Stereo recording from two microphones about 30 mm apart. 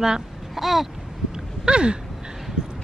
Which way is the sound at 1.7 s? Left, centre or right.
Right.